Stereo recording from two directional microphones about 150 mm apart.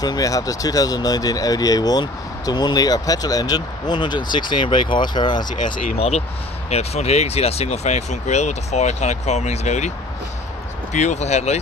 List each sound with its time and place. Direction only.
0.0 s speech: 25° left (ahead or behind)
5.9 s speech: 45° left (ahead or behind)